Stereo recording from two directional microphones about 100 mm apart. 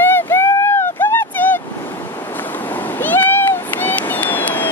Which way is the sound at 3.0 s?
20° left (ahead or behind).